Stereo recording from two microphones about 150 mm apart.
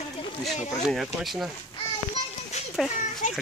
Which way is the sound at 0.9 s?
Centre (ahead or behind).